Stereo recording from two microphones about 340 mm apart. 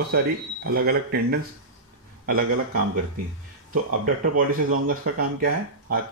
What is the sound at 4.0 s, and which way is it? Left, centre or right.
Speech, right.